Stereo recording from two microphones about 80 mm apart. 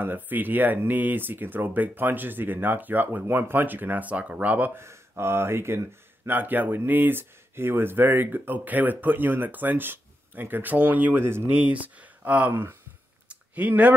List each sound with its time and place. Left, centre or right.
0.0 s speech: right